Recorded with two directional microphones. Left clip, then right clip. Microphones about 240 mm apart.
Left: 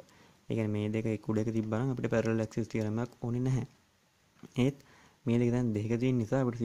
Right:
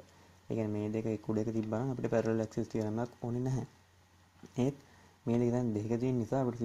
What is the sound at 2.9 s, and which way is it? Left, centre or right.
Speech, left.